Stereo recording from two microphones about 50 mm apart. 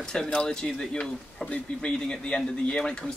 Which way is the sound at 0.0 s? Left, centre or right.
Centre.